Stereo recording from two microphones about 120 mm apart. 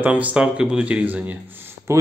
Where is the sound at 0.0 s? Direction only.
10° right (ahead or behind).